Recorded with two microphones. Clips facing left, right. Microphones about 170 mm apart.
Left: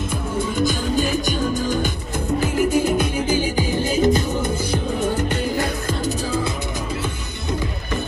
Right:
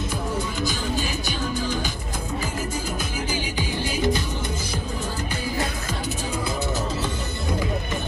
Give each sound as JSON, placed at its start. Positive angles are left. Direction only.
{"t": 1.5, "sound": "music", "side_deg": 45}
{"t": 2.4, "sound": "music", "side_deg": 65}